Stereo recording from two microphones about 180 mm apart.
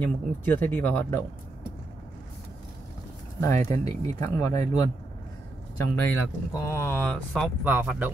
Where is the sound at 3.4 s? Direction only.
15° left (ahead or behind).